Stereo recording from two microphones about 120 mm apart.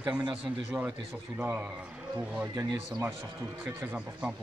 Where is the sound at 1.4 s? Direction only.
15° right (ahead or behind).